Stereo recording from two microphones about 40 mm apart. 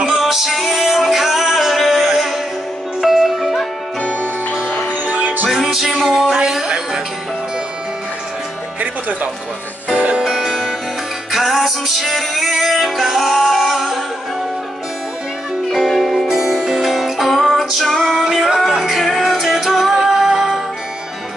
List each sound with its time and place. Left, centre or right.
0.1 s music: centre
4.6 s music: left
5.0 s music: right
5.5 s music: centre
9.9 s music: right
10.2 s music: centre
15.7 s music: centre
17.8 s music: centre
18.1 s music: centre